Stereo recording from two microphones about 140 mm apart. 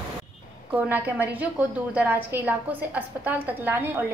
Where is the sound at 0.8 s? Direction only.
10° right (ahead or behind).